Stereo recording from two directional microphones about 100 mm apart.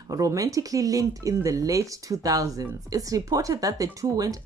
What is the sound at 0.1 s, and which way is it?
Speech, 35° right (ahead or behind).